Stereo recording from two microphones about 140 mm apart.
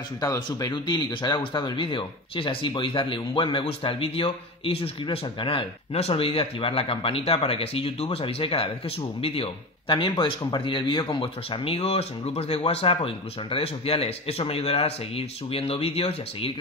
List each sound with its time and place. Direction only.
0.2 s speech: 25° left (ahead or behind); by 16.5 s 45° left (ahead or behind)